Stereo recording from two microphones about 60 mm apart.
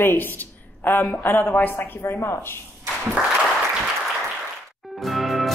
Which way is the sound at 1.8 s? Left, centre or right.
Left.